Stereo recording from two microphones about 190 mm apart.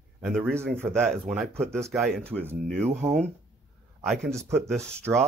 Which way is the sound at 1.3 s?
Centre (ahead or behind).